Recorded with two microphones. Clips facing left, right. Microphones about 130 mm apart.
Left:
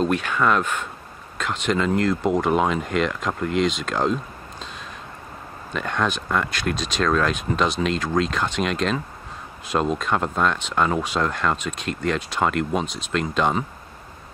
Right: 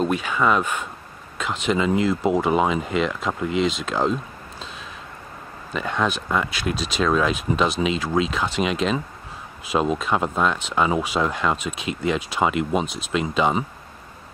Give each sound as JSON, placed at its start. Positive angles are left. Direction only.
{"t": 0.0, "sound": "speech", "side_deg": -5}
{"t": 5.7, "sound": "speech", "side_deg": -5}